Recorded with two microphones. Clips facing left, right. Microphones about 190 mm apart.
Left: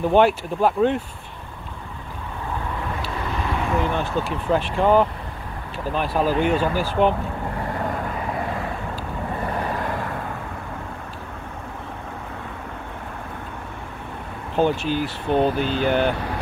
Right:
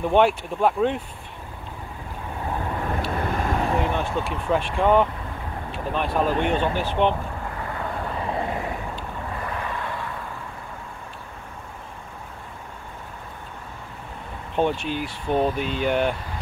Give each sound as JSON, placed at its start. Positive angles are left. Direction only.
{"t": 0.0, "sound": "speech", "side_deg": 0}
{"t": 3.1, "sound": "vehicle", "side_deg": -50}
{"t": 3.9, "sound": "speech", "side_deg": 0}
{"t": 9.5, "sound": "vehicle", "side_deg": 40}
{"t": 14.5, "sound": "speech", "side_deg": 0}